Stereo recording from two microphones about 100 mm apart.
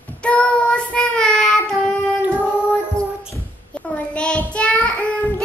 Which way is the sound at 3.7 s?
10° left (ahead or behind).